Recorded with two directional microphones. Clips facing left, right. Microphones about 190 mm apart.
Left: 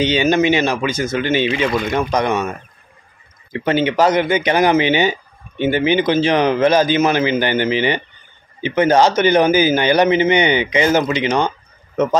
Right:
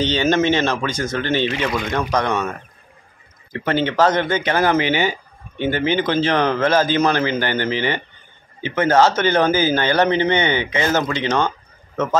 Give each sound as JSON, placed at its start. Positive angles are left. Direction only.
{"t": 0.0, "sound": "a man's voice", "side_deg": 15}
{"t": 3.5, "sound": "a man's voice", "side_deg": 15}